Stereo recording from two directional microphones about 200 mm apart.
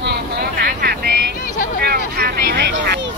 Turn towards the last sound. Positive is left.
turn(degrees=-55)  # may be behind; listen again after turning